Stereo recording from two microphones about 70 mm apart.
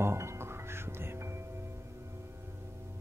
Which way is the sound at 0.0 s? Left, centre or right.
Right.